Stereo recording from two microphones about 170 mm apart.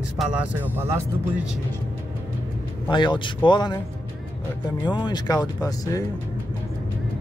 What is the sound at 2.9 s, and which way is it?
Speech, 25° left (ahead or behind).